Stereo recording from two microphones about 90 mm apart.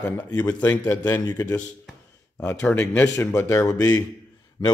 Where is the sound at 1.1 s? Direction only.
45° left (ahead or behind).